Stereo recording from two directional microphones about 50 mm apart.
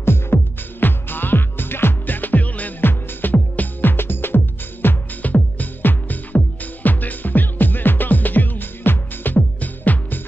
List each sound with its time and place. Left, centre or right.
0.0 s music: left
2.8 s music: left
5.2 s music: left